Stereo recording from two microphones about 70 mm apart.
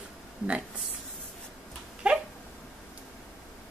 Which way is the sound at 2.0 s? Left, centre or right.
Centre.